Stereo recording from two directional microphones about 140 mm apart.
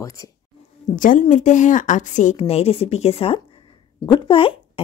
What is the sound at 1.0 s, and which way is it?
A woman's voice, 70° left (ahead or behind).